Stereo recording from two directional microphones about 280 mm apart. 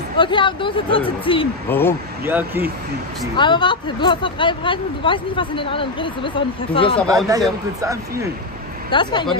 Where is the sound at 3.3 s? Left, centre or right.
Centre.